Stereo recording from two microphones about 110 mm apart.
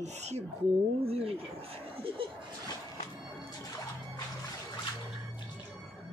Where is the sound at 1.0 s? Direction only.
65° right (ahead or behind).